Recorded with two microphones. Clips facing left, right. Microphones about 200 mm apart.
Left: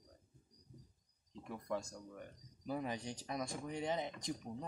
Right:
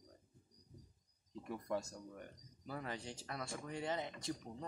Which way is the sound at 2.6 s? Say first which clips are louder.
Left 4 dB; 15° left (ahead or behind).